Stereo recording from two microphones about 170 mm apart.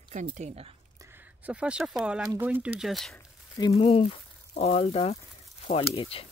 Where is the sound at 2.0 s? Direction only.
5° right (ahead or behind).